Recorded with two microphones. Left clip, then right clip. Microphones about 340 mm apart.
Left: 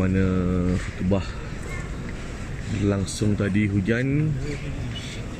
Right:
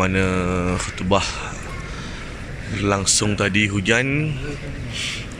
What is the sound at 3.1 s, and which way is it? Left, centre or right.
Speech, centre.